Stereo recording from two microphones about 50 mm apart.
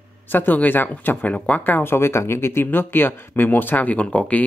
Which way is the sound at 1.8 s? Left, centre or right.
Left.